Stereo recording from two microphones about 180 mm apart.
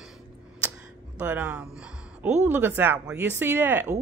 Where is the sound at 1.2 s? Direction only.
10° right (ahead or behind).